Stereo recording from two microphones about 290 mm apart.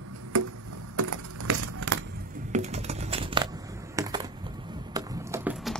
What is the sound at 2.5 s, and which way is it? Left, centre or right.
Typing, right.